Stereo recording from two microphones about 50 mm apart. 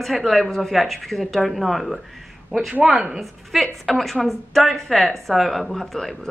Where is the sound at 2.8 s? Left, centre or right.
Centre.